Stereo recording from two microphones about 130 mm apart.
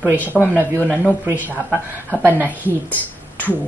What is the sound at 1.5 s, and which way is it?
A woman's voice, 15° right (ahead or behind).